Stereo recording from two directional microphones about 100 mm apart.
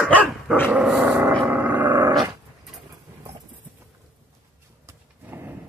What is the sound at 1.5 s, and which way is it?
Vehicle, 15° right (ahead or behind).